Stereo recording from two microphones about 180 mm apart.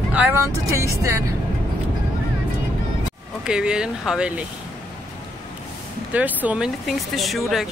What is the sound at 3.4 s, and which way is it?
Speech, 5° right (ahead or behind).